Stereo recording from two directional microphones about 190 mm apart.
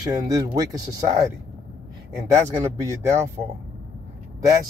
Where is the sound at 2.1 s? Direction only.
15° right (ahead or behind).